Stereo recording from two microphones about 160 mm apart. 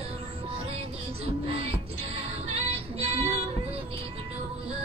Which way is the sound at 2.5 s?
40° right (ahead or behind).